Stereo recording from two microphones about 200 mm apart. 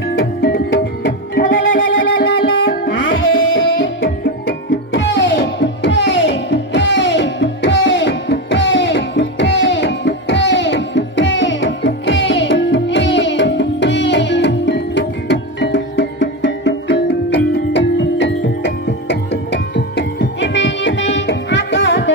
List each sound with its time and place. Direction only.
0.2 s music: 55° left (ahead or behind)
1.8 s music: 60° left (ahead or behind)
3.1 s tabla: 65° left (ahead or behind)